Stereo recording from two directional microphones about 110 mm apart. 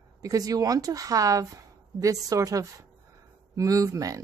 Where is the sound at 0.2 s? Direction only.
30° right (ahead or behind).